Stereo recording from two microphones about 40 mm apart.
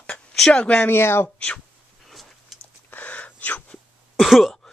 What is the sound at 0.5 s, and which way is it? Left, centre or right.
Speech, left.